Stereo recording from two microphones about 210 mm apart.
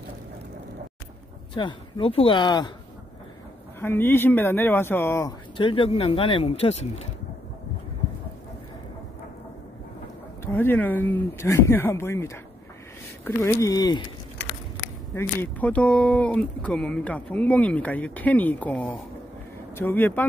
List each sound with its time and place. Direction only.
1.5 s speech: 25° left (ahead or behind)
3.8 s speech: 10° left (ahead or behind)
5.6 s speech: 25° left (ahead or behind)
10.4 s speech: 10° left (ahead or behind)
15.1 s speech: 10° left (ahead or behind)